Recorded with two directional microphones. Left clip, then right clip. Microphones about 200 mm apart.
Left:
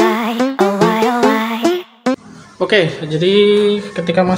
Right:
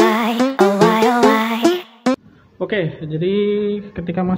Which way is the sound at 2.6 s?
10° left (ahead or behind).